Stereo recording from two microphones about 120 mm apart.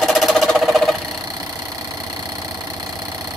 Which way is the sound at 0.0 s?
Centre (ahead or behind).